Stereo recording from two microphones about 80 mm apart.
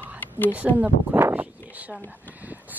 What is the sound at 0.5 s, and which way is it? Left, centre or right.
Speech, centre.